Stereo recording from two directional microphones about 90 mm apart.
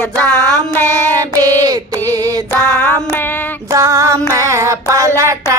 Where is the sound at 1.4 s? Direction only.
40° right (ahead or behind).